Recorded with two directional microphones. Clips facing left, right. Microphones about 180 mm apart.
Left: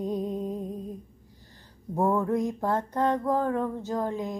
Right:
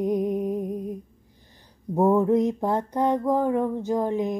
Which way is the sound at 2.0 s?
20° right (ahead or behind).